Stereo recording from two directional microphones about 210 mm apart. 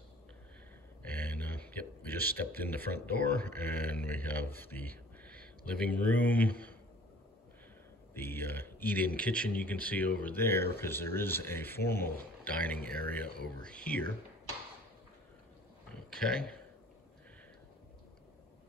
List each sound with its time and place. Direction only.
1.1 s speech: 10° left (ahead or behind)
8.1 s speech: 10° left (ahead or behind)
15.9 s a sound: 5° left (ahead or behind)